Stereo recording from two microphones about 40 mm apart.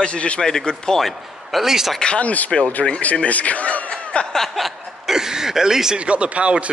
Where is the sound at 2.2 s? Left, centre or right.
Left.